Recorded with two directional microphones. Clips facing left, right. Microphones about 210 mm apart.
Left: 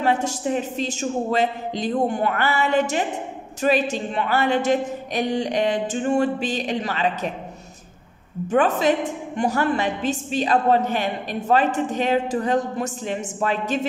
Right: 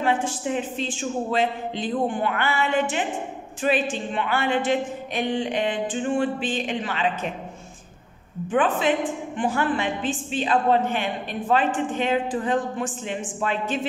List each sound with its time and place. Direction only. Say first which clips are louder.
0.0 s a woman's voice: left 2 dB; 40° left (ahead or behind)
8.5 s a woman's voice: left 3 dB; 40° left (ahead or behind)